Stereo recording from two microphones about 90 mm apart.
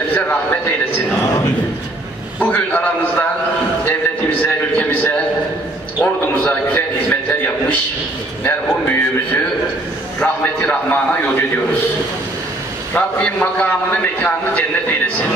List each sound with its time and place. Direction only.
2.4 s a man's voice: 20° left (ahead or behind)
4.4 s a sound: 20° left (ahead or behind)
8.6 s a man's voice: 20° left (ahead or behind)
12.9 s a man's voice: 15° left (ahead or behind)